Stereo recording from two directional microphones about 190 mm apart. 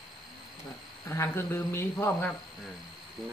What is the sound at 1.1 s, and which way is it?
Speech, 15° left (ahead or behind).